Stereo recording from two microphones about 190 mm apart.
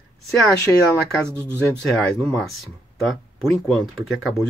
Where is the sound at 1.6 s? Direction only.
5° left (ahead or behind).